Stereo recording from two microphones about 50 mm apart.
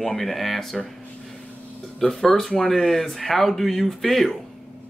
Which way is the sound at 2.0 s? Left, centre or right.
Centre.